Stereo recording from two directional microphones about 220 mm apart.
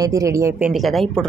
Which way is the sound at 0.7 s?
Centre (ahead or behind).